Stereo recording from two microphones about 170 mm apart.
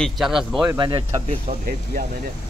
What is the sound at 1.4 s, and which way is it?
Speech, 55° right (ahead or behind).